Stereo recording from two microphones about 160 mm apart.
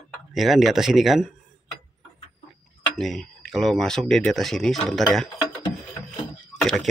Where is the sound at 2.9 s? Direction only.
Centre (ahead or behind).